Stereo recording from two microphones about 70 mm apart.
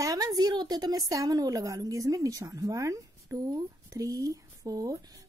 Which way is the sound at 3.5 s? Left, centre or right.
Right.